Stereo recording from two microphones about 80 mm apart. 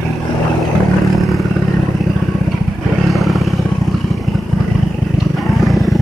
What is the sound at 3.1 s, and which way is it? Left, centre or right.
Vehicle, centre.